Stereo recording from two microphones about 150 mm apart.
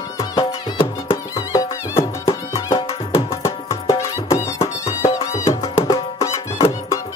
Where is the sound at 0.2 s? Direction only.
35° left (ahead or behind).